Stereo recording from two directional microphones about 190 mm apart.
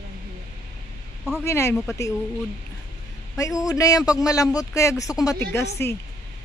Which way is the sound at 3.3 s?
15° left (ahead or behind).